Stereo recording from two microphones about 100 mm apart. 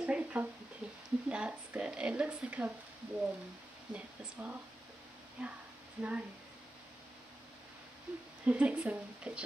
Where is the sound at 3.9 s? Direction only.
15° right (ahead or behind).